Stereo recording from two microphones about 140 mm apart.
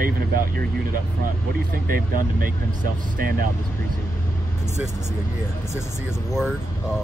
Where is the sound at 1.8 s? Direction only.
90° right.